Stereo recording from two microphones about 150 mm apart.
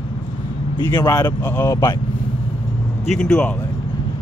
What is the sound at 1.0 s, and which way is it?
Speech, 25° left (ahead or behind).